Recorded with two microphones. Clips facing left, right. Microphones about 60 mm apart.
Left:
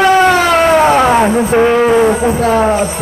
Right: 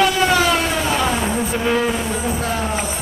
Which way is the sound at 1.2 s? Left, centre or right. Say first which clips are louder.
Left 10 dB; left.